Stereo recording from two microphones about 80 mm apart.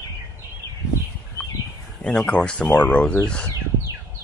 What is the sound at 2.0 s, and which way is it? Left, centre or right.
Speech, centre.